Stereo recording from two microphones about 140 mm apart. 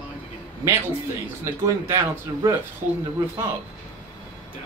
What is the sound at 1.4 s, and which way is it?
Speech, 20° right (ahead or behind).